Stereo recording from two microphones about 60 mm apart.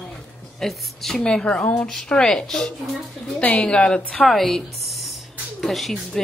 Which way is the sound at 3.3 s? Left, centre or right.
Left.